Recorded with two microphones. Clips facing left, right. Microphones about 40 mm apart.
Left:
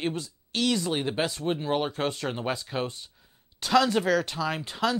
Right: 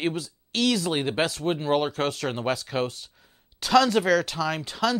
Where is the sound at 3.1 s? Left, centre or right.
Centre.